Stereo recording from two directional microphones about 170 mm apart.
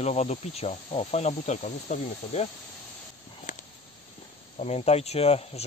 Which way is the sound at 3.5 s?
45° left (ahead or behind).